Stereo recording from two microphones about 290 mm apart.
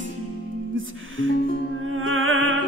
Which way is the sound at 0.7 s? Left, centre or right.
Right.